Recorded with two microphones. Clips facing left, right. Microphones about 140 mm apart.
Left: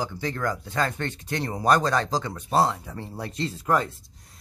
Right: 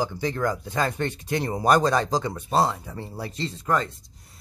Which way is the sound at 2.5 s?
Centre (ahead or behind).